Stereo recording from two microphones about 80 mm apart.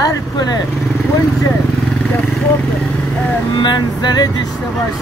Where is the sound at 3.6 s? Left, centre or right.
Left.